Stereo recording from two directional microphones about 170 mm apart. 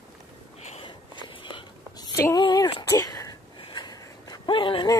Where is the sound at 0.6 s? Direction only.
40° left (ahead or behind).